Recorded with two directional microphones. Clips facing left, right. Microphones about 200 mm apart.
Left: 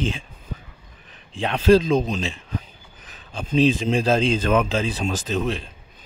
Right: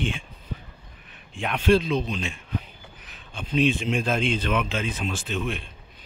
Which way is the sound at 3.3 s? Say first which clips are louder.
Left 4 dB; 35° left (ahead or behind).